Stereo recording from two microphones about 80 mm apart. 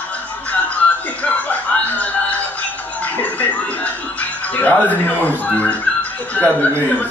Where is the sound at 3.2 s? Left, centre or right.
Left.